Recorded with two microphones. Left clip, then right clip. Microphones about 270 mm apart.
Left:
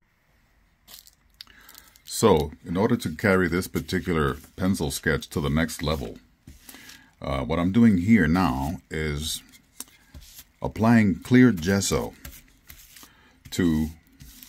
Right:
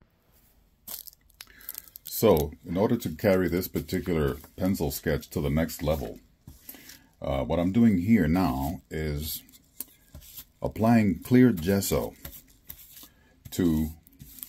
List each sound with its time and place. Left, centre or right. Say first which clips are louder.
2.1 s speech: left 2 dB; left
13.5 s speech: left 2 dB; left